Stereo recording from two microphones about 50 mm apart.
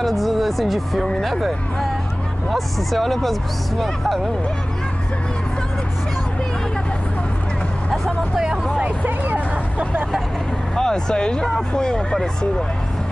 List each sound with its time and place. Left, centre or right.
0.0 s speech: centre
9.0 s vehicle: right
10.8 s speech: centre